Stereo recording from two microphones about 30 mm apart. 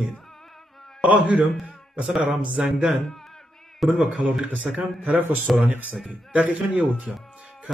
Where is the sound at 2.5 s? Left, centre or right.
Right.